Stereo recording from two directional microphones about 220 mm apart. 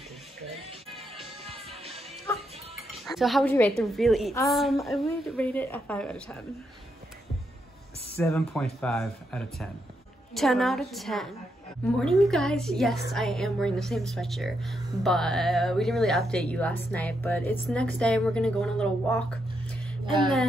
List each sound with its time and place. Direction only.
1.4 s music: 25° right (ahead or behind)
2.7 s dishes: centre (ahead or behind)
3.5 s a woman's voice: 10° left (ahead or behind)
8.2 s a woman's voice: 5° left (ahead or behind)